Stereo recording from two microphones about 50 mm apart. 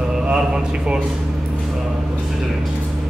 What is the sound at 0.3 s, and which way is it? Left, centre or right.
Speech, centre.